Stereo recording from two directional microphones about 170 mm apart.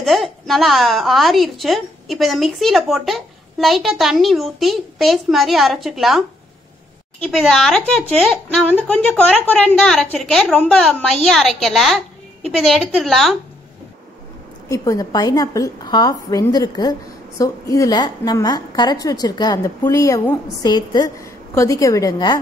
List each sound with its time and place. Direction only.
0.0 s a woman's voice: centre (ahead or behind)
14.7 s a woman's voice: 20° left (ahead or behind)